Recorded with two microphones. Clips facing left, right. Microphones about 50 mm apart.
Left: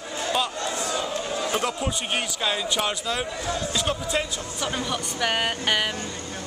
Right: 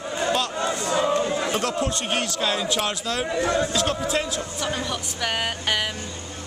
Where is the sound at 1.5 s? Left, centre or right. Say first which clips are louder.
Right 2 dB; centre.